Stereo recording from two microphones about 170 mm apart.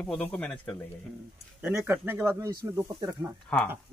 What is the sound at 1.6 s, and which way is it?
Speech, 15° right (ahead or behind).